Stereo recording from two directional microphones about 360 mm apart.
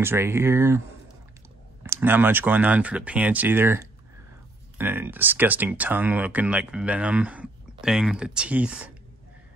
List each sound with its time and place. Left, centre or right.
0.0 s speech: centre